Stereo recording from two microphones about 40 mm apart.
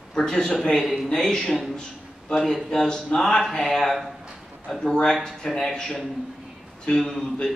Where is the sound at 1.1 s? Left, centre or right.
Centre.